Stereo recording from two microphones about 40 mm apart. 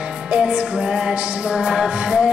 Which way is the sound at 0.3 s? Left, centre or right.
Right.